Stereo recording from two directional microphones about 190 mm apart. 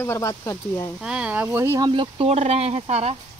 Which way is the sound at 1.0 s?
5° right (ahead or behind).